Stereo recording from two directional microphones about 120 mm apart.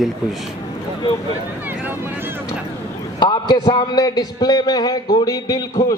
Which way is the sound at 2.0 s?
20° right (ahead or behind).